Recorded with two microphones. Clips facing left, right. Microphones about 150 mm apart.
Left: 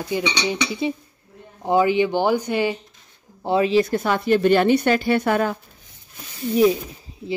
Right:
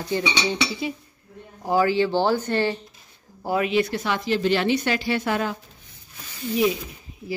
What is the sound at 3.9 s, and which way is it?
A woman's voice, 50° left (ahead or behind).